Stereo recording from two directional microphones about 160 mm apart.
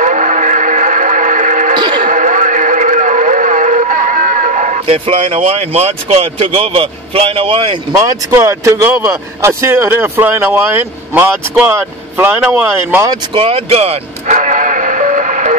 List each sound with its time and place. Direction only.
0.0 s vehicle: 50° right (ahead or behind)
2.0 s radio: 50° right (ahead or behind)
4.9 s speech: 35° right (ahead or behind)
8.0 s a man's voice: 20° right (ahead or behind)
13.3 s music: 35° right (ahead or behind)